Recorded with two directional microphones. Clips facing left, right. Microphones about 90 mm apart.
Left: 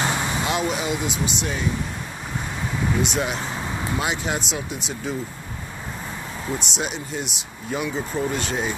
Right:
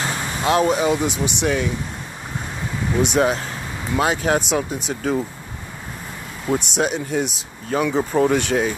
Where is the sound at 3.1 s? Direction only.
45° right (ahead or behind).